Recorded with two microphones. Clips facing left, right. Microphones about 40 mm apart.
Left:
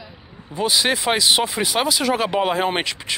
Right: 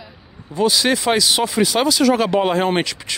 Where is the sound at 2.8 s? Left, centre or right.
Left.